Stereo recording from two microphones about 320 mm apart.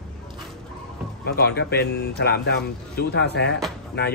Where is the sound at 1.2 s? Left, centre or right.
Left.